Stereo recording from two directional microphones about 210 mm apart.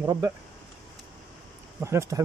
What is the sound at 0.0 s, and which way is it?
Speech, 15° right (ahead or behind).